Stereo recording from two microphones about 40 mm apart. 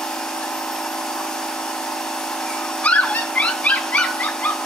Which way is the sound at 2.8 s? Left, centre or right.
Left.